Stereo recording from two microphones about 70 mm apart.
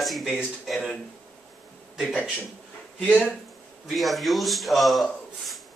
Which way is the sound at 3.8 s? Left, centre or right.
Centre.